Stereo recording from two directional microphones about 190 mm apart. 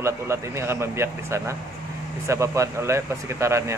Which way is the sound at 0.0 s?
15° right (ahead or behind).